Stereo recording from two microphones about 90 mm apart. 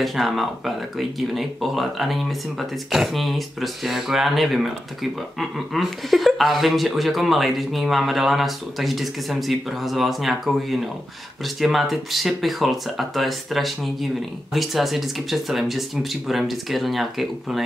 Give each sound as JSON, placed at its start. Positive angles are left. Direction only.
{"t": 0.0, "sound": "speech", "side_deg": 0}